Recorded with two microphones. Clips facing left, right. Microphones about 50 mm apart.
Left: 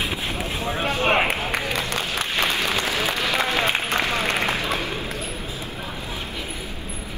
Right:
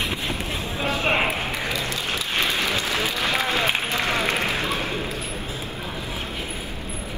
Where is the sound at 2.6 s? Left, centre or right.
Left.